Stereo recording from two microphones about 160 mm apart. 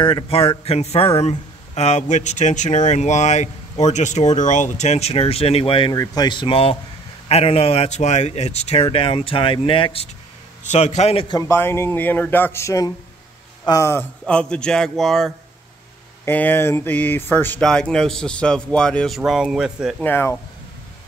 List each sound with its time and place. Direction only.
0.0 s a man's voice: 35° left (ahead or behind)
10.6 s speech: 45° left (ahead or behind)
11.3 s speech: 15° left (ahead or behind)
16.3 s speech: 10° left (ahead or behind); by 20.0 s 5° right (ahead or behind)
20.0 s speech: 15° left (ahead or behind)